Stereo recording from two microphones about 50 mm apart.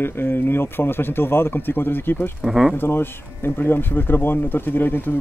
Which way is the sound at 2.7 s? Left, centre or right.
Left.